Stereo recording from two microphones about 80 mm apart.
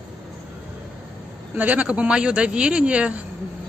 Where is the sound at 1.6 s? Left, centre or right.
Centre.